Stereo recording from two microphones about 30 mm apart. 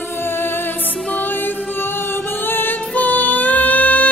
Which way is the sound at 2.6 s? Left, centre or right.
Left.